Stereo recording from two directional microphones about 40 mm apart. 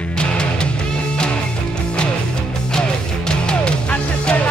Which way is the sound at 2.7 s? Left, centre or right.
Centre.